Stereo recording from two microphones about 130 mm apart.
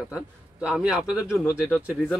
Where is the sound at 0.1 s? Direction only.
10° right (ahead or behind).